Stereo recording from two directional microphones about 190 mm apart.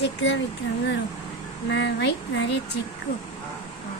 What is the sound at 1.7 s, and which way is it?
Speech, 65° left (ahead or behind).